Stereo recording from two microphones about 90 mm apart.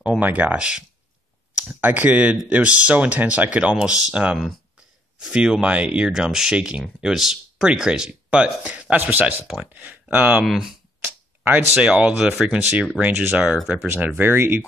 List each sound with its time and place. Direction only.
0.2 s speech: 20° right (ahead or behind)
10.4 s speech: centre (ahead or behind)
11.4 s speech: 15° right (ahead or behind)
13.4 s speech: 5° right (ahead or behind)
13.9 s speech: 20° right (ahead or behind)